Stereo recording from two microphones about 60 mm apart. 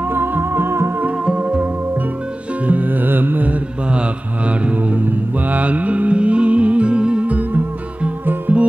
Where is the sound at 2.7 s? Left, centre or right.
Right.